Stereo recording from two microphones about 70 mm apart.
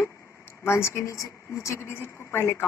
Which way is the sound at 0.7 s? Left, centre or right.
Left.